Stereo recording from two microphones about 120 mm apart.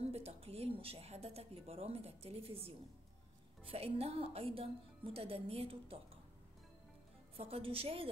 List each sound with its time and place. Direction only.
0.0 s a woman's voice: 60° right (ahead or behind)
7.3 s a woman's voice: 55° right (ahead or behind)